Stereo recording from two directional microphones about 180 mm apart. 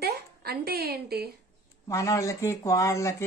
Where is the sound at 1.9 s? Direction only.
15° left (ahead or behind).